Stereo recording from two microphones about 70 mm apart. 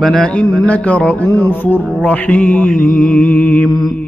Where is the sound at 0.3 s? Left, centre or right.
Centre.